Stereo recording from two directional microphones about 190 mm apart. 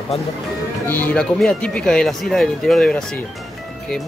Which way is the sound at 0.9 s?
10° left (ahead or behind).